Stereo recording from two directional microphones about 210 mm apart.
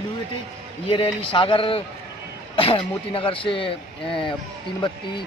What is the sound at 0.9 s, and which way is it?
A man's voice, 25° left (ahead or behind).